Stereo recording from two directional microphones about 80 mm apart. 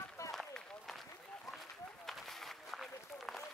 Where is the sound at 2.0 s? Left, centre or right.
Centre.